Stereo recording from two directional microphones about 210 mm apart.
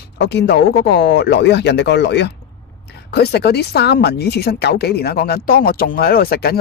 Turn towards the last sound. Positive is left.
turn(degrees=50)  # may be behind; listen again after turning